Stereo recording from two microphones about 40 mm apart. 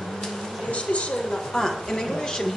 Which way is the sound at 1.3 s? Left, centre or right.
Centre.